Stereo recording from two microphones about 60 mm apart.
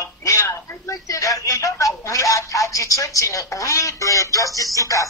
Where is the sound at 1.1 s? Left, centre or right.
Left.